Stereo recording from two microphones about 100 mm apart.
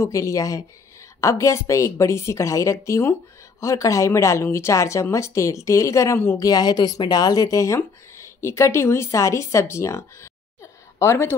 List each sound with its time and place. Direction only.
0.0 s a woman's voice: 30° left (ahead or behind)
6.3 s speech: 40° left (ahead or behind)